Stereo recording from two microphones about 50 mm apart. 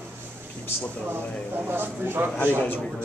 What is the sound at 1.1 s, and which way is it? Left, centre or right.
Speech, right.